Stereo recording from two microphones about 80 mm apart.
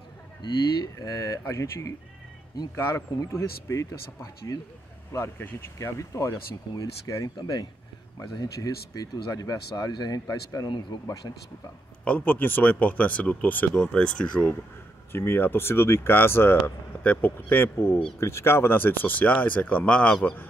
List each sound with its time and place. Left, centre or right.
0.4 s speech: left
0.9 s speech: left
5.8 s speech: left
7.3 s speech: left
8.2 s speech: left
10.7 s speech: left
12.0 s speech: centre
15.1 s speech: left